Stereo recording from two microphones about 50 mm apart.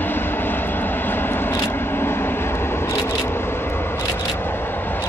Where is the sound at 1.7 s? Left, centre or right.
Left.